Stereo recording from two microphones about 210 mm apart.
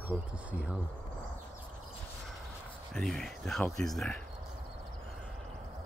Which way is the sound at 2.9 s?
Centre (ahead or behind).